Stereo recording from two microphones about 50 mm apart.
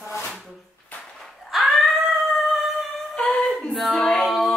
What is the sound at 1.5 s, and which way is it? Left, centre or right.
Dog, centre.